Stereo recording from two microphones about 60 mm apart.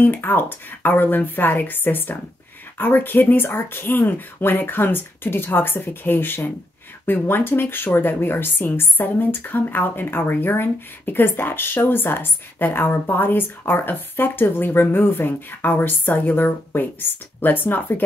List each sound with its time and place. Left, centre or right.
0.0 s speech: left